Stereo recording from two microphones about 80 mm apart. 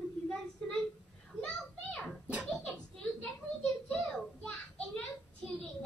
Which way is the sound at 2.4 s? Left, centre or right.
Centre.